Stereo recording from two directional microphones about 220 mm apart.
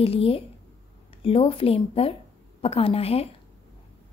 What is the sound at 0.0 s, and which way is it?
A woman's voice, 25° left (ahead or behind).